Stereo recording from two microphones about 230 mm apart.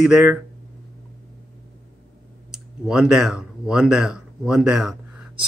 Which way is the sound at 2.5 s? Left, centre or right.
Centre.